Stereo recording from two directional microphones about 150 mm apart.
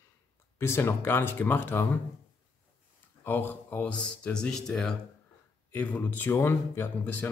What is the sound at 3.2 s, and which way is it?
A man's voice, 15° left (ahead or behind).